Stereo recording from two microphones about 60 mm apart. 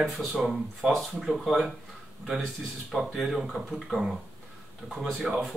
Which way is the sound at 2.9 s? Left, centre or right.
Centre.